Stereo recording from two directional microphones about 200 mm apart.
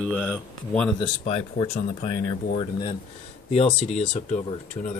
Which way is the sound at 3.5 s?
30° left (ahead or behind).